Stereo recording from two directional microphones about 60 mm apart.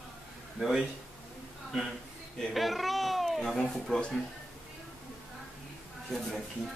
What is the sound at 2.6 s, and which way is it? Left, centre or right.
Speech, centre.